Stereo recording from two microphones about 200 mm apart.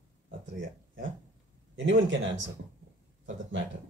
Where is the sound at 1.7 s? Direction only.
70° right (ahead or behind).